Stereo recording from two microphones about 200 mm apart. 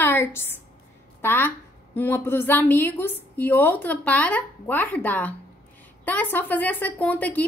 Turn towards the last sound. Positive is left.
turn(degrees=10)  # may be behind; listen again after turning